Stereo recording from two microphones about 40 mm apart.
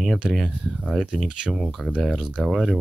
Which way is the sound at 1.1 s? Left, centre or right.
Centre.